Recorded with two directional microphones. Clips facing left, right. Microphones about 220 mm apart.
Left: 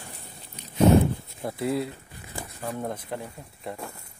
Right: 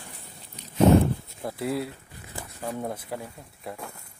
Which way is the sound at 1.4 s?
Centre (ahead or behind).